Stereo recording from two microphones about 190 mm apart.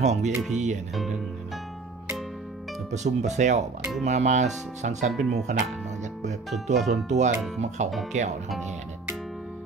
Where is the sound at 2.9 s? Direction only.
40° right (ahead or behind).